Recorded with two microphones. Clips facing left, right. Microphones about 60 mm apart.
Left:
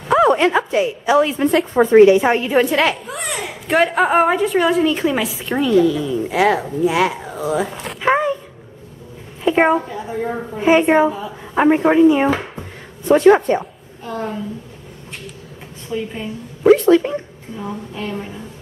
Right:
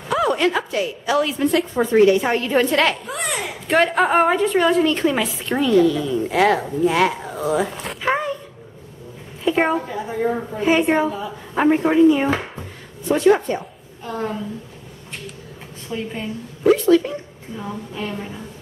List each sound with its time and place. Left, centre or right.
0.1 s a woman's voice: left
1.6 s speech: left
2.0 s a child's voice: left; by 7.7 s centre
8.0 s a sound: centre
9.4 s a sound: left
9.8 s a woman's voice: centre
10.6 s speech: left
13.1 s speech: left
14.0 s a child's voice: centre
15.9 s a child's voice: centre
16.7 s speech: left
17.6 s a child's voice: centre